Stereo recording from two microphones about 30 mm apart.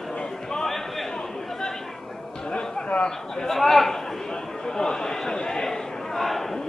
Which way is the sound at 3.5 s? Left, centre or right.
Centre.